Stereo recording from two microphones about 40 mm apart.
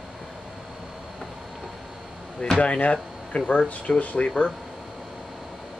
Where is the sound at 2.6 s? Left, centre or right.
Left.